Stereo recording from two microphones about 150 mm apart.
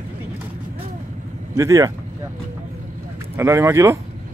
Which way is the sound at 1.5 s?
20° right (ahead or behind).